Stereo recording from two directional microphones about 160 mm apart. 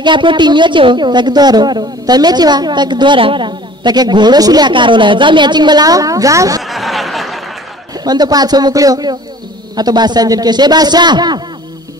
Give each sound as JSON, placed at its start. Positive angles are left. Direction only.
{"t": 0.0, "sound": "a woman's voice", "side_deg": -30}
{"t": 6.6, "sound": "a sound", "side_deg": 0}
{"t": 8.0, "sound": "a woman's voice", "side_deg": -25}